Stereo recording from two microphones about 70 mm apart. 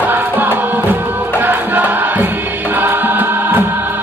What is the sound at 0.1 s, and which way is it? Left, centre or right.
Music, right.